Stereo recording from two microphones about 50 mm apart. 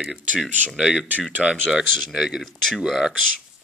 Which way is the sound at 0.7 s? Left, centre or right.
Centre.